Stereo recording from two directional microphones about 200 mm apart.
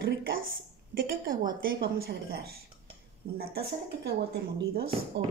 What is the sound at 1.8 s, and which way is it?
Speech, 55° right (ahead or behind).